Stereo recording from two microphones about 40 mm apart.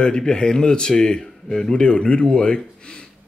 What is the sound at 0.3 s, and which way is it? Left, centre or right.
Speech, left.